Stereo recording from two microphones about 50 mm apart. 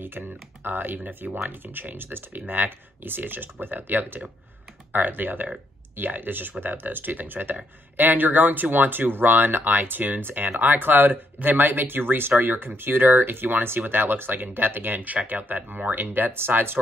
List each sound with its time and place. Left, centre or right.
0.0 s speech: right